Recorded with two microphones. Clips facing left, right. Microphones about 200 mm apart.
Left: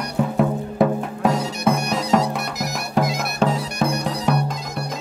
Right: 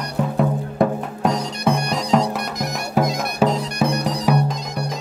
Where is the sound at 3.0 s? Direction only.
5° right (ahead or behind).